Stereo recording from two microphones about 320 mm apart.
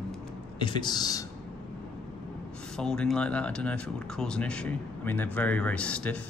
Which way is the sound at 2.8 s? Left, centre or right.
Centre.